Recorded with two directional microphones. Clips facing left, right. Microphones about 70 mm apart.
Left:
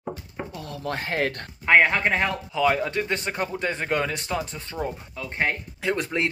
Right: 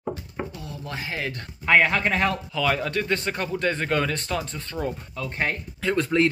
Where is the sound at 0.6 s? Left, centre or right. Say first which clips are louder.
Left 4 dB; left.